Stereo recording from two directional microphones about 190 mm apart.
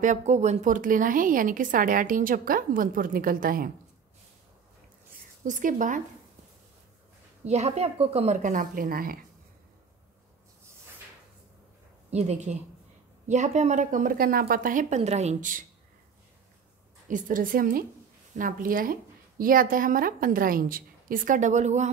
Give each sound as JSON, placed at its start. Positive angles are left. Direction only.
{"t": 0.0, "sound": "a woman's voice", "side_deg": -40}
{"t": 5.4, "sound": "a woman's voice", "side_deg": -45}
{"t": 7.4, "sound": "a woman's voice", "side_deg": -35}
{"t": 12.1, "sound": "a woman's voice", "side_deg": -35}
{"t": 17.1, "sound": "a woman's voice", "side_deg": -45}